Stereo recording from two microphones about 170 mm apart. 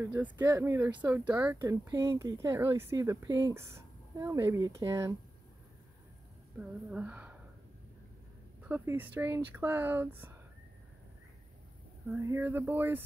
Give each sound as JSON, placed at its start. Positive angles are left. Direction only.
{"t": 0.0, "sound": "speech", "side_deg": -10}
{"t": 1.6, "sound": "speech", "side_deg": -20}
{"t": 6.6, "sound": "speech", "side_deg": -5}
{"t": 8.6, "sound": "speech", "side_deg": -10}
{"t": 12.1, "sound": "speech", "side_deg": -15}